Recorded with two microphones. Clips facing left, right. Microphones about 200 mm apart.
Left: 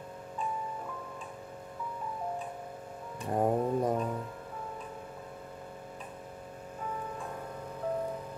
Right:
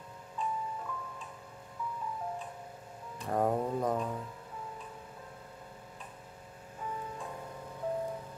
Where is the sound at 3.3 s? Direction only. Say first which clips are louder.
Left 2 dB; 15° left (ahead or behind).